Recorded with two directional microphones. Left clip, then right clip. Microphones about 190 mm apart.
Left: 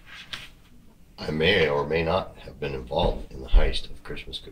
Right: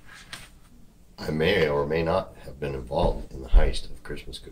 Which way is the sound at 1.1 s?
15° right (ahead or behind).